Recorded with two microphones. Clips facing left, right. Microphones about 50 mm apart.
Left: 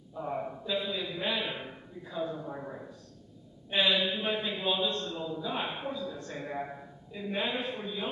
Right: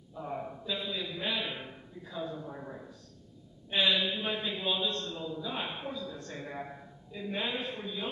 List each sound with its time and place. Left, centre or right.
0.1 s a man's voice: centre